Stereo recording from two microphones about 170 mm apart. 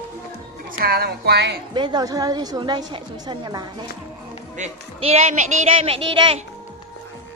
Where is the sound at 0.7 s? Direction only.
65° right (ahead or behind).